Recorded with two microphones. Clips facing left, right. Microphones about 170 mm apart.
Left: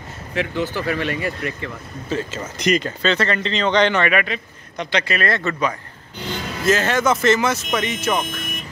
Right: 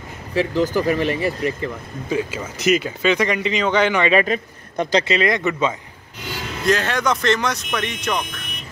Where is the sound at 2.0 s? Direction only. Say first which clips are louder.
Right 2 dB; 10° right (ahead or behind).